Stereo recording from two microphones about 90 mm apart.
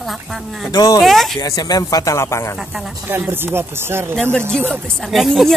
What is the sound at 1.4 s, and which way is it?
Speech, 45° left (ahead or behind).